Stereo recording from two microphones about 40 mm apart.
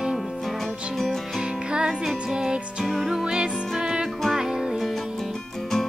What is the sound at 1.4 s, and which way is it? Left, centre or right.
Music, right.